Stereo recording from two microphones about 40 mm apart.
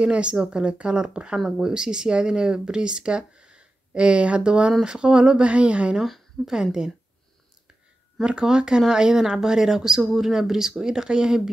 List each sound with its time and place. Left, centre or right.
0.0 s speech: right
6.4 s speech: centre
8.2 s speech: right